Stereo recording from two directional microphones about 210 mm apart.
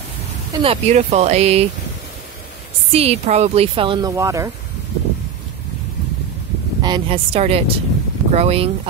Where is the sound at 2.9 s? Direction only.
30° right (ahead or behind); by 4.5 s 15° right (ahead or behind).